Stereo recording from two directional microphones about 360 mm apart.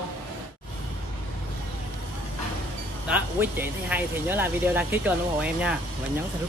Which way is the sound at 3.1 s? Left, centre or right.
Centre.